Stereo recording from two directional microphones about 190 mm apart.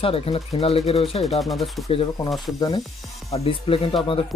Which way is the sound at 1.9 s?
30° left (ahead or behind).